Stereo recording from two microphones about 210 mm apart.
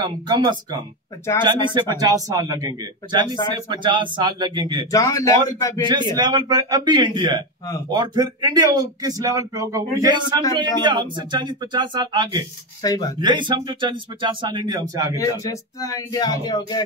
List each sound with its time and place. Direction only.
0.0 s a man's voice: 20° right (ahead or behind)
4.9 s speech: 15° left (ahead or behind)
5.9 s speech: 20° right (ahead or behind)
12.8 s speech: 15° left (ahead or behind)
13.2 s speech: 20° right (ahead or behind)
15.1 s speech: 15° left (ahead or behind)